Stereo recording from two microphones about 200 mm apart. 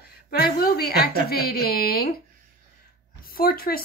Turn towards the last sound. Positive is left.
turn(degrees=45)  # may be behind; listen again after turning